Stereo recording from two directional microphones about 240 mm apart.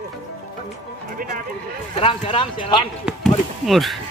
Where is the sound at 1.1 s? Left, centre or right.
Right.